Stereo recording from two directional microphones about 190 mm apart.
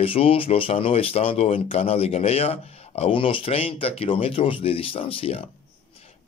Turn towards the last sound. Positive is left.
turn(degrees=30)  # may be behind; listen again after turning